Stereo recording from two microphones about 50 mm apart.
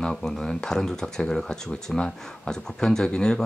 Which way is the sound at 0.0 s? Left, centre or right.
Centre.